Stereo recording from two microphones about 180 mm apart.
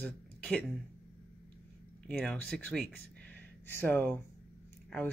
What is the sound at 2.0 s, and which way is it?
Speech, 5° left (ahead or behind).